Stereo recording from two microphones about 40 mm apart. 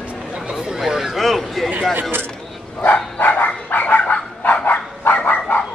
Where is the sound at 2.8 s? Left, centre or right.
Left.